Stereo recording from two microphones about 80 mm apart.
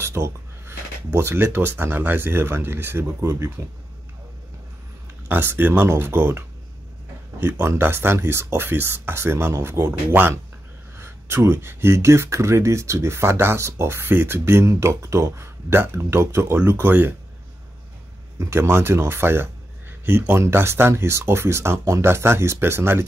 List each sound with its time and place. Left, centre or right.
0.0 s speech: right
5.3 s speech: right
18.4 s speech: right